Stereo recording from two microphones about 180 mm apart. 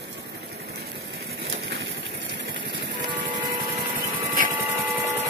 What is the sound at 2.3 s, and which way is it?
Vehicle, 80° right.